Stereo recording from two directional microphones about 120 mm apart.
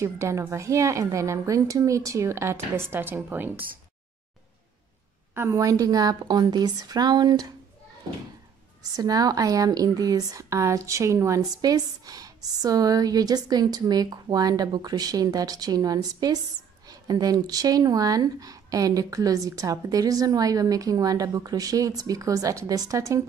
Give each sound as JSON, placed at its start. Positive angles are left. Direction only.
{"t": 0.0, "sound": "a woman's voice", "side_deg": -25}
{"t": 5.3, "sound": "speech", "side_deg": -20}
{"t": 8.9, "sound": "speech", "side_deg": -30}